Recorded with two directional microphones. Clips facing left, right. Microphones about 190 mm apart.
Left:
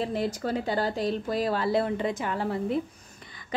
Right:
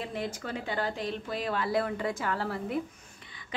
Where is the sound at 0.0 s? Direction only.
35° left (ahead or behind).